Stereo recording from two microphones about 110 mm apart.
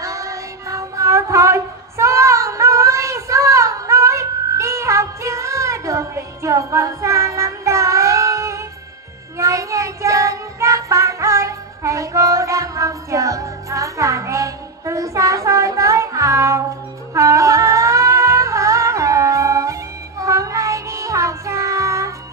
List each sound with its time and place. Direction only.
0.0 s a sound: 30° right (ahead or behind)
9.4 s child singing: 30° right (ahead or behind)
17.1 s music: 30° right (ahead or behind)